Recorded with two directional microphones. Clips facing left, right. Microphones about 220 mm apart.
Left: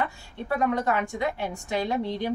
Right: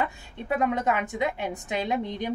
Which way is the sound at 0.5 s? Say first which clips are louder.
Even; 20° right (ahead or behind).